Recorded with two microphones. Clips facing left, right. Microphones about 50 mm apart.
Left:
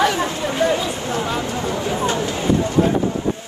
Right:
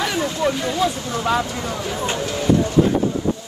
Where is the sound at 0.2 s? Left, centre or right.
Left.